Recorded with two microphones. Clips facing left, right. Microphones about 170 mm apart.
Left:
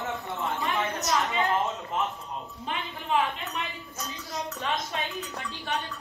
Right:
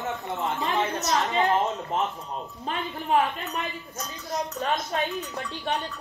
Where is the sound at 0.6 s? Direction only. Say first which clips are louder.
Right 3 dB; 40° right (ahead or behind).